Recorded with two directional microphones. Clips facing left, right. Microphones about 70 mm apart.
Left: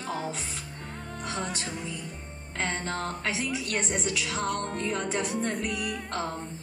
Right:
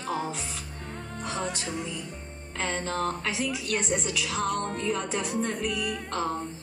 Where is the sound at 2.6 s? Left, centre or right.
Left.